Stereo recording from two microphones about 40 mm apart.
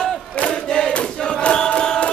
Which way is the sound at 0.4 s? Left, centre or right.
Left.